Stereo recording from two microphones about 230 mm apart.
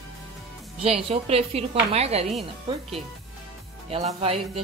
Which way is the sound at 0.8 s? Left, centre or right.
Right.